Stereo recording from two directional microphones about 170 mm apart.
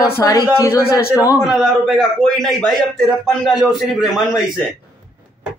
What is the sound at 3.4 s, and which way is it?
Speech, centre (ahead or behind).